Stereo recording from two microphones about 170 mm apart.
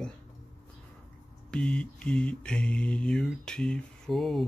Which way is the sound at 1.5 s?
5° left (ahead or behind).